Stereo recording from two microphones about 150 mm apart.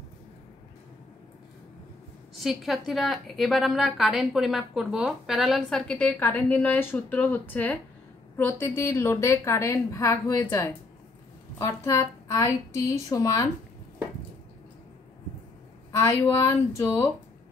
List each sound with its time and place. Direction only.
2.3 s a woman's voice: centre (ahead or behind); by 13.5 s 25° left (ahead or behind)
16.0 s a woman's voice: 20° left (ahead or behind)